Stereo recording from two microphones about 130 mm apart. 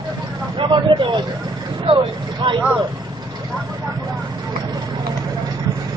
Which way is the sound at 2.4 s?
40° right (ahead or behind).